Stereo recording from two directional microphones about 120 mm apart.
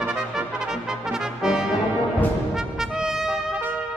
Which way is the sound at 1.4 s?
5° right (ahead or behind).